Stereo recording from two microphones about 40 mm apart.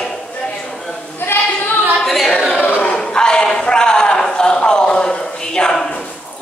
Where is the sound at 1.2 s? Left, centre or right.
Left.